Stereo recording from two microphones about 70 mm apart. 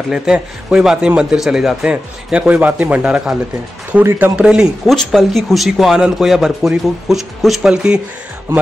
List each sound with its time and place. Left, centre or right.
0.1 s speech: centre
1.9 s speech: centre
4.0 s speech: right
4.4 s speech: centre
4.8 s a man's voice: centre